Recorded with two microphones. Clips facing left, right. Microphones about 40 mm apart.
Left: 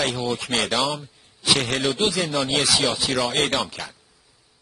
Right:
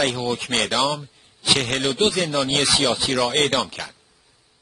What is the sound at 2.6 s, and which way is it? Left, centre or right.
Speech, centre.